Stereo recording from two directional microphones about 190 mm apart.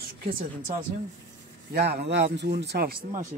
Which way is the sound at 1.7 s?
50° right (ahead or behind).